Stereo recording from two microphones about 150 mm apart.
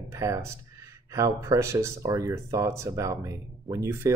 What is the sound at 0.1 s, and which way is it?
Speech, 20° right (ahead or behind).